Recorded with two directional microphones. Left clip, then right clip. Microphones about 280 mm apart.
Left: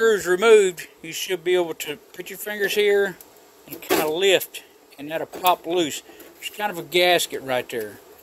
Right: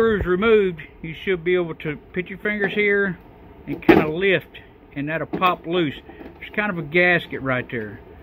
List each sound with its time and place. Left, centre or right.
0.0 s speech: left